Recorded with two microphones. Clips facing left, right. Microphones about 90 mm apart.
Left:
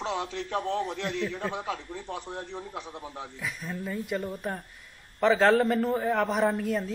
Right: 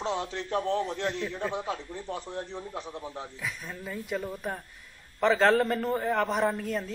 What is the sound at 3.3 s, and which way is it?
Speech, centre (ahead or behind).